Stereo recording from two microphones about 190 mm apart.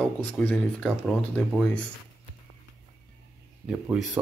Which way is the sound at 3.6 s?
5° right (ahead or behind).